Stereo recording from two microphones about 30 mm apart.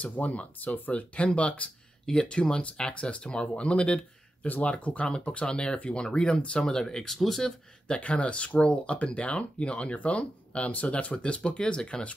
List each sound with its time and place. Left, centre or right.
0.0 s speech: left
2.1 s speech: left
2.9 s speech: left
4.5 s speech: left
5.0 s speech: left
7.1 s speech: centre
8.0 s speech: left